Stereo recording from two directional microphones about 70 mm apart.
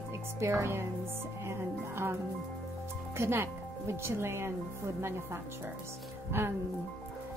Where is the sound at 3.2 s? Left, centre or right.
Right.